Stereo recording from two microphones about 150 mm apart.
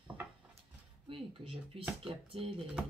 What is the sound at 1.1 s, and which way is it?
Speech, 40° right (ahead or behind).